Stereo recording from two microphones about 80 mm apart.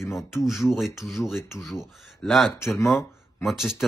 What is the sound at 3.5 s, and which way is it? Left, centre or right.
Speech, centre.